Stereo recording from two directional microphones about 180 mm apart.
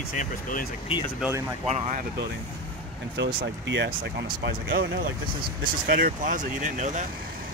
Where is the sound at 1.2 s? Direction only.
15° right (ahead or behind).